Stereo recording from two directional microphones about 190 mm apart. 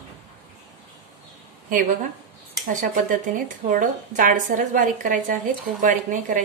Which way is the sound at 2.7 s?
40° right (ahead or behind).